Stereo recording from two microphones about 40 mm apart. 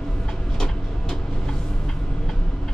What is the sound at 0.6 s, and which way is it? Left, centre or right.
Vehicle, centre.